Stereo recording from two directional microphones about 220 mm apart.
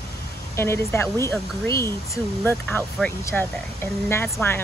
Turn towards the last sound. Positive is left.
turn(degrees=10)  # may be behind; listen again after turning